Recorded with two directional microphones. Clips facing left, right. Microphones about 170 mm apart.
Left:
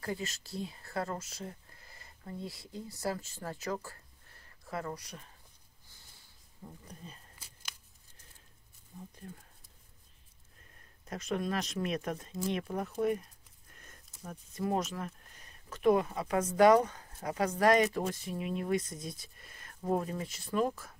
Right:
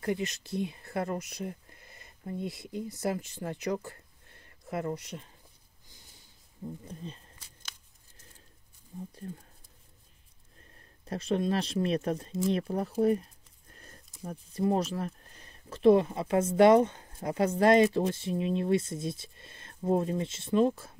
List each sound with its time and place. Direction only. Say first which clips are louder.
0.0 s speech: right 6 dB; 20° right (ahead or behind)
11.1 s speech: right 5 dB; 30° right (ahead or behind)